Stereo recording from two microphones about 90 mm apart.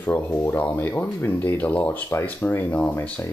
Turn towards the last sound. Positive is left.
turn(degrees=20)  # may be behind; listen again after turning